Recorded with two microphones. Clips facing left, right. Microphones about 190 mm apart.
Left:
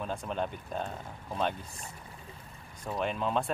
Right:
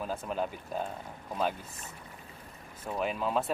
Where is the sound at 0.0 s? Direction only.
5° right (ahead or behind).